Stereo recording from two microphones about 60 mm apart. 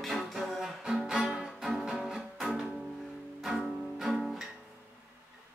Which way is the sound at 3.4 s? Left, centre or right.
Centre.